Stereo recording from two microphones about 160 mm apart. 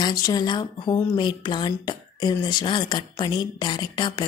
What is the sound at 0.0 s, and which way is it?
Speech, 25° left (ahead or behind).